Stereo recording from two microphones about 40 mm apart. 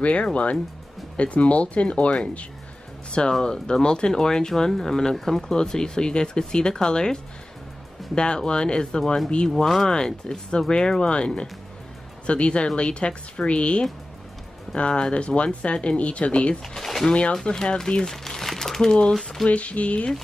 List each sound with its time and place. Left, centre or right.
0.0 s speech: left
3.3 s speech: centre; by 16.5 s left
16.6 s speech: centre
17.1 s speech: left
18.0 s crumpling: centre
19.1 s speech: centre
19.4 s speech: left